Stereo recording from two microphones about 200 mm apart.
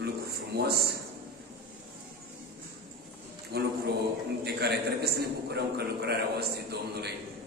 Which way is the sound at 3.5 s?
55° right (ahead or behind).